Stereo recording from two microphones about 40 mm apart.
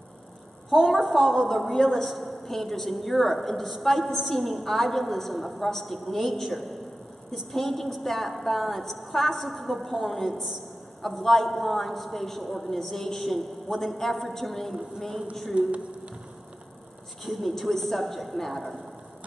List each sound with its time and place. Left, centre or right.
0.8 s a woman's voice: centre
15.5 s speech: right
17.2 s a woman's voice: centre